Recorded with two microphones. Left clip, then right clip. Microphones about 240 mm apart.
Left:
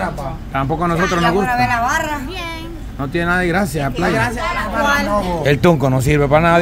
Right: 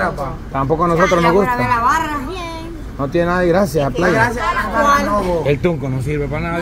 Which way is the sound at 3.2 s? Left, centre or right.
Left.